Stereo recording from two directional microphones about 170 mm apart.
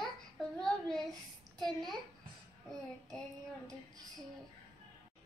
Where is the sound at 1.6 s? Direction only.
Centre (ahead or behind).